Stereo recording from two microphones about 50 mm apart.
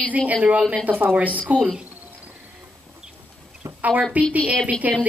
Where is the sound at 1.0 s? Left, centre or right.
Right.